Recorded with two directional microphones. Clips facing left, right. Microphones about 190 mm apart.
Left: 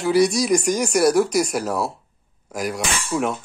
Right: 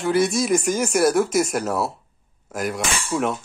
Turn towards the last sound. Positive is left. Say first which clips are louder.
# even
turn(degrees=0)  # may be behind; listen again after turning